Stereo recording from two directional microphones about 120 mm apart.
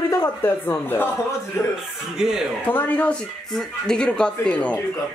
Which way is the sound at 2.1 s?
5° right (ahead or behind).